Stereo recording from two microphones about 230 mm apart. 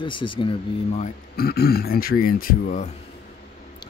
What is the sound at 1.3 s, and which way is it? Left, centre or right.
Speech, left.